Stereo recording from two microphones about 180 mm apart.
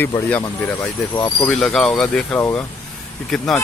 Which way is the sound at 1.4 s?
5° left (ahead or behind).